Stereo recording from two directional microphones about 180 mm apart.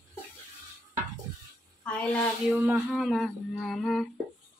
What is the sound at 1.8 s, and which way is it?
A woman's voice, 5° left (ahead or behind).